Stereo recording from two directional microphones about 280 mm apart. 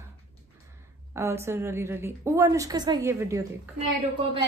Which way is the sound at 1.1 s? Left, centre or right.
Centre.